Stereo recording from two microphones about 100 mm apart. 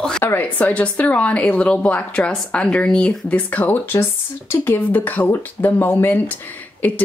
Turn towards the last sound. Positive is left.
turn(degrees=20)  # may be behind; listen again after turning